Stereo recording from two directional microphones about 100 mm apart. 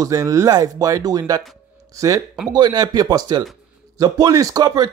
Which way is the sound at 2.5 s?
45° right (ahead or behind).